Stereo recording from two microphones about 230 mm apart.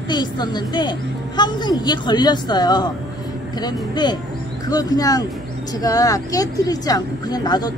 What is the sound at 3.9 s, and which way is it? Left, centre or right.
A woman's voice, centre.